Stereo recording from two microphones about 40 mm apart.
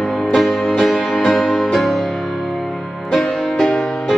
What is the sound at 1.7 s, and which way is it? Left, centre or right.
Music, centre.